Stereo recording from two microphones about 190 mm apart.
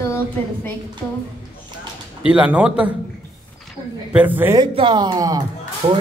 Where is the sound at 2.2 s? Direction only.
5° right (ahead or behind).